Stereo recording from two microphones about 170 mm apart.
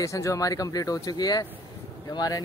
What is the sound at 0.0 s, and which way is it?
Speech, 20° left (ahead or behind).